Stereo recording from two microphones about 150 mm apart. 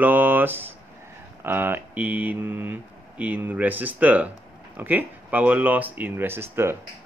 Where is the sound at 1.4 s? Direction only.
15° right (ahead or behind).